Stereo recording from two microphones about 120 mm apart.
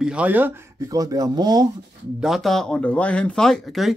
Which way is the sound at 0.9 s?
30° right (ahead or behind).